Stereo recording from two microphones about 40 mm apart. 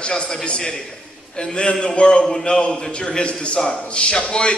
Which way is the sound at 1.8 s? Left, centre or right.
Left.